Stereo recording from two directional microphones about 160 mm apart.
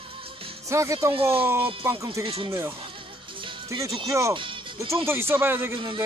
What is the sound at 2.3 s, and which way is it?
Speech, 35° right (ahead or behind).